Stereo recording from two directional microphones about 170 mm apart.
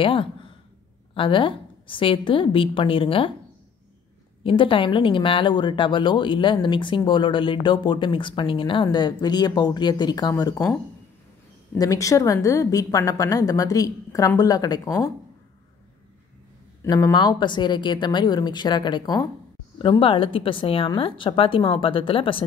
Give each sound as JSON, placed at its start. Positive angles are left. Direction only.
{"t": 0.0, "sound": "a woman's voice", "side_deg": 30}
{"t": 4.4, "sound": "a woman's voice", "side_deg": 30}
{"t": 11.8, "sound": "a woman's voice", "side_deg": 20}
{"t": 16.8, "sound": "a woman's voice", "side_deg": 20}